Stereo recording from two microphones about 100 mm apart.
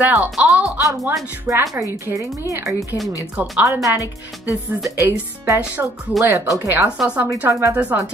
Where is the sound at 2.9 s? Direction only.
30° left (ahead or behind).